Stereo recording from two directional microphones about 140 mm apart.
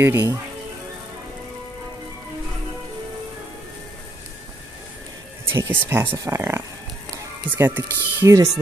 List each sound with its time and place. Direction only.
0.0 s speech: 15° right (ahead or behind)
5.4 s speech: 15° right (ahead or behind)